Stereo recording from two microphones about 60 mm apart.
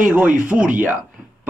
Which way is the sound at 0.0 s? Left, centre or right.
Right.